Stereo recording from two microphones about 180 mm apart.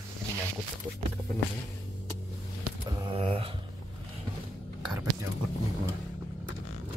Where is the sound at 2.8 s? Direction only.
20° right (ahead or behind).